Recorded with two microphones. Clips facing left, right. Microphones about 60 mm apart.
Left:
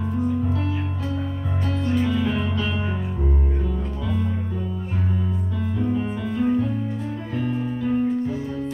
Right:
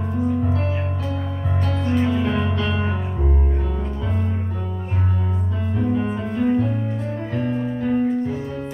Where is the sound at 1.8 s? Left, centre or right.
Right.